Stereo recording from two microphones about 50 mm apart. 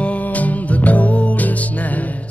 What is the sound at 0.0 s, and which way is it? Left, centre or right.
Music, left.